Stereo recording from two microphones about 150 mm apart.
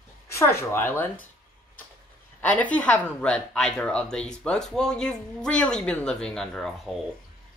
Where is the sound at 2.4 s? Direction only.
10° left (ahead or behind).